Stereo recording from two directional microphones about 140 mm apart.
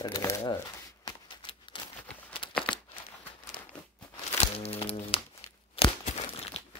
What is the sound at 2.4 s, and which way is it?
Crumpling, 35° left (ahead or behind).